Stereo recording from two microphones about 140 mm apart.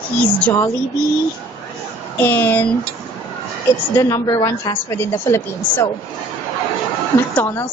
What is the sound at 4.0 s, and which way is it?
A woman's voice, 25° left (ahead or behind).